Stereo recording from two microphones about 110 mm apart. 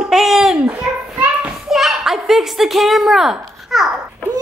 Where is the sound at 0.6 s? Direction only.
20° right (ahead or behind).